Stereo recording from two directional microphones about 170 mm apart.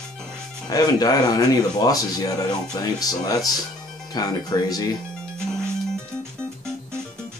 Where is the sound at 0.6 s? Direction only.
20° left (ahead or behind).